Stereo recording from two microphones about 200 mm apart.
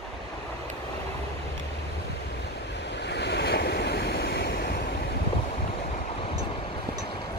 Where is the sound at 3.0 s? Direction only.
60° left (ahead or behind).